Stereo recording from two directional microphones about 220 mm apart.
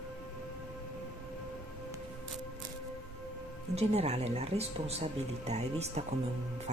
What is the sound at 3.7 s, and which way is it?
Speech, 30° right (ahead or behind).